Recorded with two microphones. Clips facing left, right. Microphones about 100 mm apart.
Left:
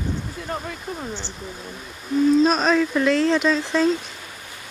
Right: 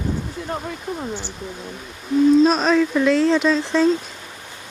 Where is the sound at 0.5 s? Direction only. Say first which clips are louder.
Right 2 dB; 15° right (ahead or behind).